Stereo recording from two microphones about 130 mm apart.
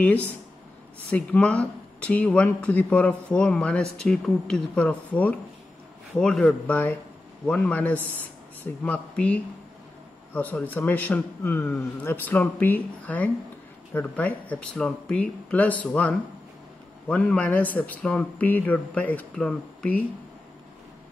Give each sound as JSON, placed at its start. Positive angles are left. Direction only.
{"t": 1.1, "sound": "speech", "side_deg": 10}